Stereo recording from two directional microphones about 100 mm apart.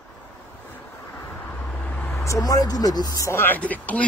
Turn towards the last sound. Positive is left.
turn(degrees=15)  # may be behind; listen again after turning